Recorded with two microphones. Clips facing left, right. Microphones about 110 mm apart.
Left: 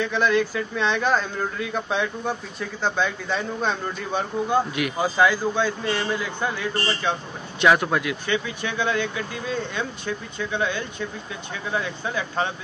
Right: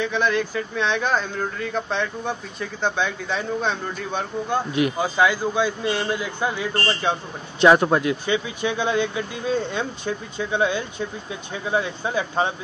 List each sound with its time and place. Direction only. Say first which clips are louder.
0.0 s speech: left 1 dB; centre (ahead or behind)
5.5 s a man's voice: right 1 dB; 15° right (ahead or behind)
7.6 s speech: right 4 dB; 30° right (ahead or behind)
8.3 s speech: right 3 dB; 20° right (ahead or behind)